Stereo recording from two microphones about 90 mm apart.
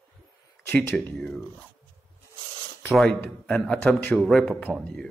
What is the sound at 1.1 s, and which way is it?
Speech, 10° left (ahead or behind).